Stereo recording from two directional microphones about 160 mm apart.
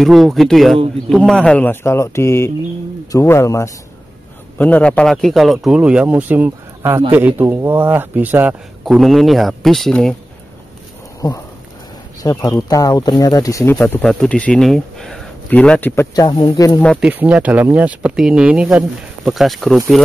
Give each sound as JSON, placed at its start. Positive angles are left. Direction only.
{"t": 0.0, "sound": "a man's voice", "side_deg": 0}
{"t": 8.8, "sound": "a man's voice", "side_deg": 0}
{"t": 11.2, "sound": "speech", "side_deg": 25}
{"t": 16.3, "sound": "speech", "side_deg": 30}
{"t": 17.0, "sound": "speech", "side_deg": -10}